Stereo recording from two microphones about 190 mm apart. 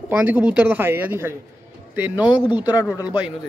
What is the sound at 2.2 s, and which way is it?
Speech, 25° left (ahead or behind).